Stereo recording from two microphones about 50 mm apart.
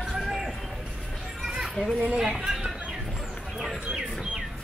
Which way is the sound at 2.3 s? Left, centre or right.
Centre.